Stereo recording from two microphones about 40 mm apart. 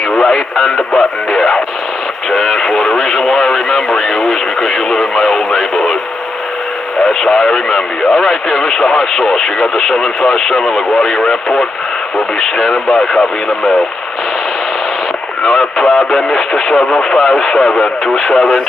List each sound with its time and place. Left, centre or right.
0.1 s radio: centre
7.1 s speech: centre
12.4 s speech: centre
15.4 s speech: centre